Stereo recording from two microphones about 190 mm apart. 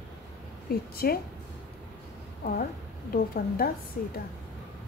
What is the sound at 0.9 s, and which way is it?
Speech, 50° left (ahead or behind).